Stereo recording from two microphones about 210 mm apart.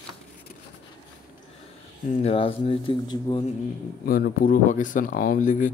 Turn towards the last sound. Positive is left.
turn(degrees=35)  # may be behind; listen again after turning